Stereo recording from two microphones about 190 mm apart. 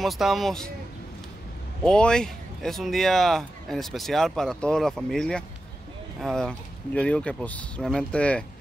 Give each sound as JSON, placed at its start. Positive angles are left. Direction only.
{"t": 0.0, "sound": "speech", "side_deg": 0}
{"t": 1.9, "sound": "speech", "side_deg": 5}